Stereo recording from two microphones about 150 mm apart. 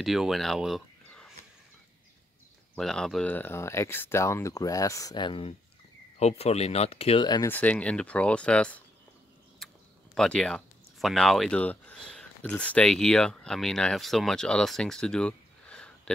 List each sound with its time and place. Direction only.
0.0 s speech: centre (ahead or behind)
2.8 s speech: 5° left (ahead or behind); by 5.5 s 30° left (ahead or behind)
6.1 s speech: 45° left (ahead or behind)
7.4 s speech: 10° left (ahead or behind)
9.6 s a sound: centre (ahead or behind)
10.1 s speech: 5° left (ahead or behind)